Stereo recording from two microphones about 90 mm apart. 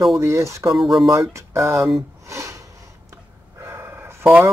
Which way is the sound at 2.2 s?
35° right (ahead or behind).